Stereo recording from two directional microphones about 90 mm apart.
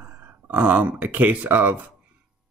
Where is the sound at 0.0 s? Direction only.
20° right (ahead or behind).